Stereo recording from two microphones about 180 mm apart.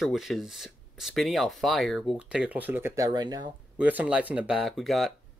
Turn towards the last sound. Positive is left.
turn(degrees=0)  # may be behind; listen again after turning